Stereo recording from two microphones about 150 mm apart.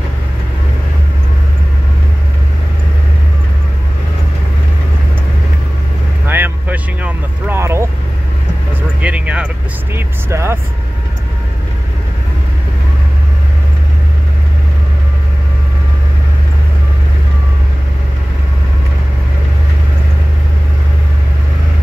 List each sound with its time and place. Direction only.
6.2 s vehicle: 15° right (ahead or behind)
9.0 s a sound: 10° right (ahead or behind)
9.9 s vehicle: 15° right (ahead or behind)